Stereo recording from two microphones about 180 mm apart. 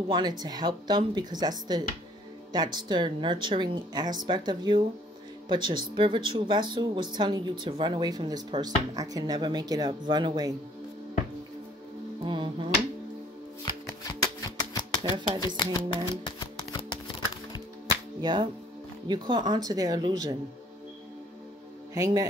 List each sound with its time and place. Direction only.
0.1 s speech: 25° right (ahead or behind)
12.2 s speech: 25° right (ahead or behind)
14.2 s shuffling cards: 20° left (ahead or behind)
15.2 s speech: 20° left (ahead or behind)
16.3 s music: 25° left (ahead or behind)
18.2 s speech: 25° right (ahead or behind)
21.9 s a man's voice: 20° right (ahead or behind)